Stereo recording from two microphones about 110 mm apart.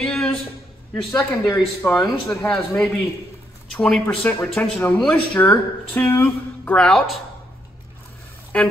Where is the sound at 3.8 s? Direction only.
10° left (ahead or behind).